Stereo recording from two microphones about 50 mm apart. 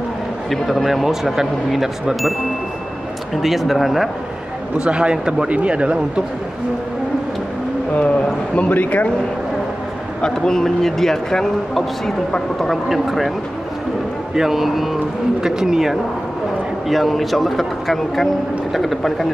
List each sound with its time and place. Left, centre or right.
0.5 s a man's voice: centre
1.0 s speech: centre
3.3 s a man's voice: centre
4.7 s a man's voice: right
8.0 s a man's voice: left
10.2 s a man's voice: centre
14.3 s a man's voice: centre